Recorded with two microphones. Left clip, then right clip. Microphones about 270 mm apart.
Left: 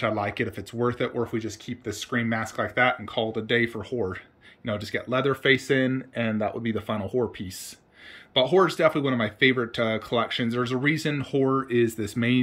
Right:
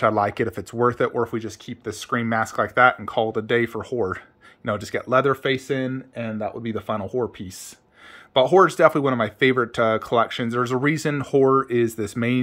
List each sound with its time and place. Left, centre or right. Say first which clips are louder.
0.0 s speech: right 6 dB; centre